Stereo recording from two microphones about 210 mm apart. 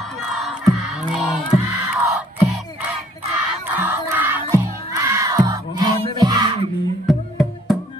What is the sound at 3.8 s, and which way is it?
Music, 10° right (ahead or behind).